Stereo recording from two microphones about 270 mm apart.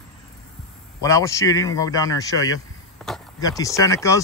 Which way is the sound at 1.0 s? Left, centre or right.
Centre.